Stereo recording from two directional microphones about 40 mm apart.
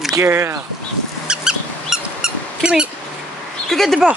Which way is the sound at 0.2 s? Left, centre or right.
Right.